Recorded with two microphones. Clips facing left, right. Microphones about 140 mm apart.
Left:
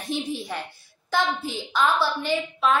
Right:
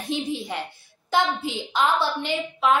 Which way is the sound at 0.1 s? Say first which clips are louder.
Right 1 dB; 20° right (ahead or behind).